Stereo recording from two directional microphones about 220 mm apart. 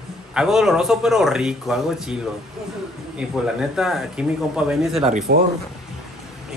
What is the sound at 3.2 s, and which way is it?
Speech, centre (ahead or behind).